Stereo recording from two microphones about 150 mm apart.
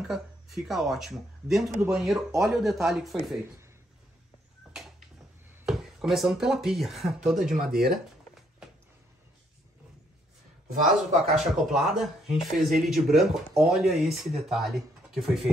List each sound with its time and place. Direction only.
0.0 s speech: centre (ahead or behind)
5.7 s speech: centre (ahead or behind)
7.3 s speech: 65° right (ahead or behind); by 8.0 s 90° right
10.7 s speech: 55° right (ahead or behind)
11.3 s speech: centre (ahead or behind)